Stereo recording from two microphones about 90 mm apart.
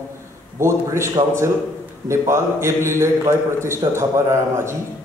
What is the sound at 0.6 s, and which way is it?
A man's voice, 30° right (ahead or behind).